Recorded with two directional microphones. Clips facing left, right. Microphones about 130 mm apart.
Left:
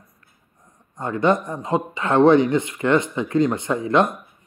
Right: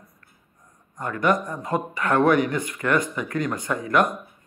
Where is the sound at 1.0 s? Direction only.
25° left (ahead or behind).